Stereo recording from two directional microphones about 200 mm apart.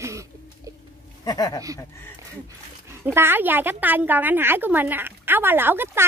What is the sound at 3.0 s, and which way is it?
A woman's voice, 10° right (ahead or behind).